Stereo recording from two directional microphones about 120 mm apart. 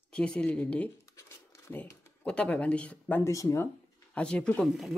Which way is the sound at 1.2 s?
25° left (ahead or behind).